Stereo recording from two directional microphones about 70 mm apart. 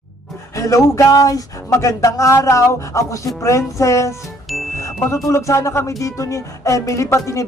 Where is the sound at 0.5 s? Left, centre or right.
Left.